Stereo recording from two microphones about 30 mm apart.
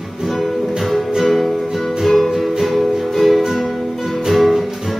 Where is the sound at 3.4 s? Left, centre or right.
Centre.